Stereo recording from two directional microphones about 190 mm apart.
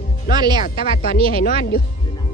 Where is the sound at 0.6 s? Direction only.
50° left (ahead or behind).